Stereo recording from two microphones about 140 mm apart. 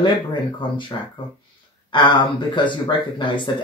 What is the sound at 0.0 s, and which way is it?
Speech, 35° left (ahead or behind).